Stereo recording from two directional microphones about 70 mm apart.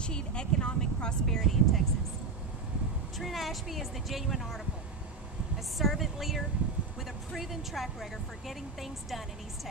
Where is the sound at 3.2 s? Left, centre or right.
Centre.